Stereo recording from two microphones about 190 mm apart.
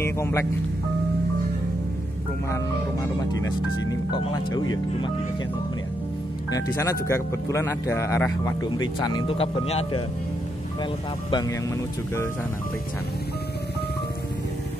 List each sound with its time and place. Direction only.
0.0 s speech: 15° left (ahead or behind)
3.9 s speech: 20° left (ahead or behind)
6.5 s speech: 15° left (ahead or behind); by 9.8 s 30° left (ahead or behind)